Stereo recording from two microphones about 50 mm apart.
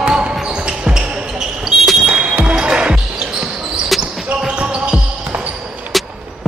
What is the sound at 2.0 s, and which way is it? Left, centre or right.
Music, centre.